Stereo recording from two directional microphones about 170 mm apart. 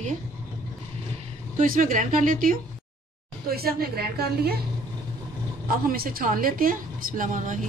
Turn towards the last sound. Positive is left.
turn(degrees=-50)  # may be behind; listen again after turning